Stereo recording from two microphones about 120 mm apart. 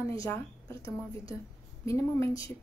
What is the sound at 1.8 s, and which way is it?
Speech, 25° left (ahead or behind).